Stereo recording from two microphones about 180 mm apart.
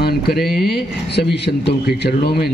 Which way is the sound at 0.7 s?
65° left (ahead or behind).